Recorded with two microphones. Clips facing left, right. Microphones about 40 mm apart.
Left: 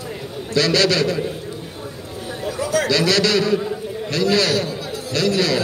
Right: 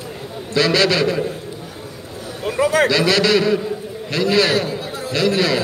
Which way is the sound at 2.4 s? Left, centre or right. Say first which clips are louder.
Right 5 dB; right.